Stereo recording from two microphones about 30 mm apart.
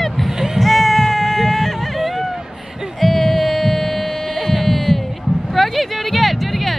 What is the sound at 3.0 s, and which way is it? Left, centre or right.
Music, centre.